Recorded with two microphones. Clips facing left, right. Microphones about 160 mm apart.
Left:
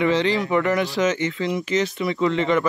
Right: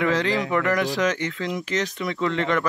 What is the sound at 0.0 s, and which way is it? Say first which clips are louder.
Speech: left 2 dB; centre (ahead or behind).